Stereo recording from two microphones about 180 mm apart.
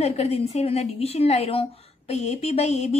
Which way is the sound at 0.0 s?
35° left (ahead or behind).